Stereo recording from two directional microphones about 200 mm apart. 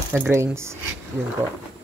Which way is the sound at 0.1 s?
10° right (ahead or behind).